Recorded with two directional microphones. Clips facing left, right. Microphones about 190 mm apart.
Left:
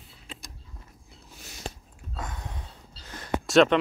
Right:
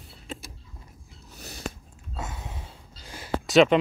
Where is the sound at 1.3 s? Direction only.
35° right (ahead or behind).